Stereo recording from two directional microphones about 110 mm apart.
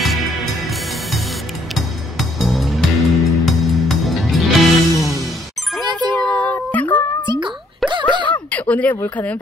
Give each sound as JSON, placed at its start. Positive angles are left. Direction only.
{"t": 0.0, "sound": "music", "side_deg": 0}
{"t": 6.1, "sound": "music", "side_deg": 10}
{"t": 7.2, "sound": "plop", "side_deg": -45}
{"t": 7.8, "sound": "a sound", "side_deg": 0}
{"t": 8.3, "sound": "speech", "side_deg": 10}